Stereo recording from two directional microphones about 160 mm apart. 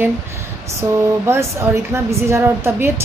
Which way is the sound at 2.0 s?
15° right (ahead or behind).